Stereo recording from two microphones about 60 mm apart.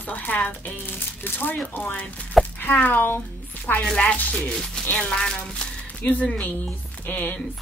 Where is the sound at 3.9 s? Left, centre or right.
Centre.